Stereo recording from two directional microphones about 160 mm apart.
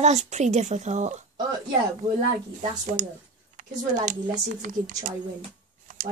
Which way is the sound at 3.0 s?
55° right (ahead or behind).